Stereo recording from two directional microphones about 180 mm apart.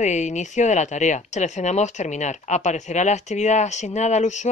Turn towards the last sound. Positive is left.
turn(degrees=40)  # may be behind; listen again after turning